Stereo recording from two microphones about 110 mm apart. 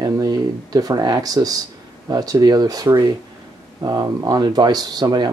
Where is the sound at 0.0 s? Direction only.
35° right (ahead or behind).